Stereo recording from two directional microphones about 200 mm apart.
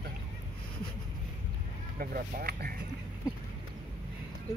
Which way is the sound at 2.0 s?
50° right (ahead or behind).